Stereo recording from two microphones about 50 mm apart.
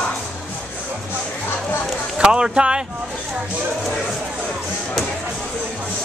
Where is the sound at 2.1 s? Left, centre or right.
Centre.